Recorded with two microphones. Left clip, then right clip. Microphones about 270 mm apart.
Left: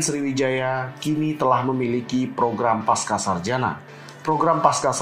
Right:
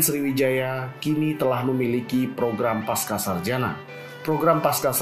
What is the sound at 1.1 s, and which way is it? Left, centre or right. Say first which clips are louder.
Speech: right 1 dB; left.